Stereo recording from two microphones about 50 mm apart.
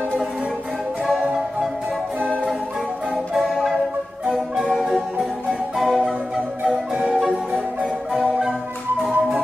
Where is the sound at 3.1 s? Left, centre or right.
Centre.